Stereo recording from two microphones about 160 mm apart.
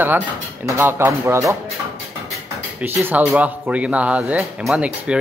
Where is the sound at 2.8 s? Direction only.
10° right (ahead or behind).